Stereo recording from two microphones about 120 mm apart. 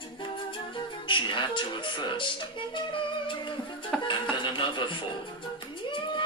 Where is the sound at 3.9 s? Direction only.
5° left (ahead or behind).